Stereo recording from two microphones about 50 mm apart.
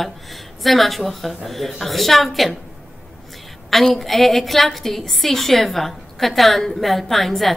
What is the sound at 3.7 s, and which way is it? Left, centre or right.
A woman's voice, centre.